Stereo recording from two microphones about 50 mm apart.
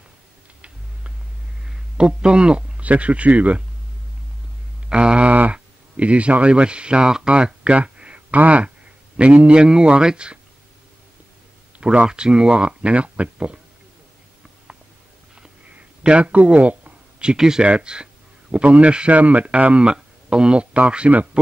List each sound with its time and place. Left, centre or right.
1.6 s speech: centre
4.8 s a man's voice: centre
11.8 s speech: right
16.0 s a man's voice: right